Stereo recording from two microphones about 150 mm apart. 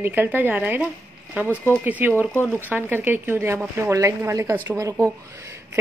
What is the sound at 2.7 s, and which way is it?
A woman's voice, 10° right (ahead or behind).